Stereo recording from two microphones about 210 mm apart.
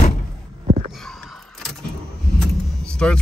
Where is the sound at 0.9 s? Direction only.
Centre (ahead or behind).